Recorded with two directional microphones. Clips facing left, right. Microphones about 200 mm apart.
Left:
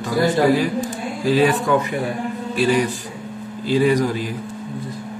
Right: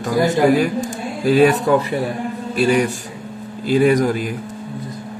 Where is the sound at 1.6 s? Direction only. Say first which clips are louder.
Right 2 dB; 35° right (ahead or behind).